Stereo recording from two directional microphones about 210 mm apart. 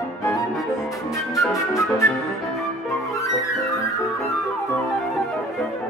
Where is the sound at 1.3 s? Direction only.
15° left (ahead or behind).